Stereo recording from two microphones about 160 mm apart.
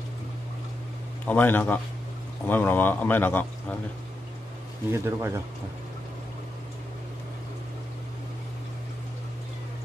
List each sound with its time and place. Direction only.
1.2 s speech: 10° left (ahead or behind)
4.9 s speech: 15° right (ahead or behind)